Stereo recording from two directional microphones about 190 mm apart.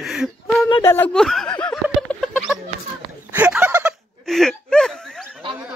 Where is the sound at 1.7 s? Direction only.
Centre (ahead or behind).